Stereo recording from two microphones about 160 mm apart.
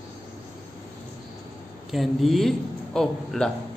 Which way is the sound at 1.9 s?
Centre (ahead or behind).